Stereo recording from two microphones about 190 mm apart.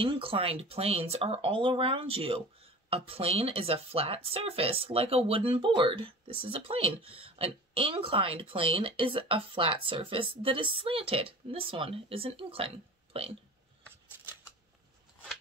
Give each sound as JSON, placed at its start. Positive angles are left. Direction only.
{"t": 0.0, "sound": "speech", "side_deg": -30}